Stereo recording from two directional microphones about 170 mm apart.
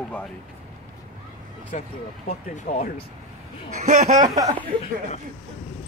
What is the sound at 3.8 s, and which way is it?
Speech, 45° right (ahead or behind).